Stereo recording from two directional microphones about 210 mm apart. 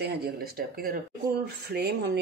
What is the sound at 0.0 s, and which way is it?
Speech, 45° right (ahead or behind).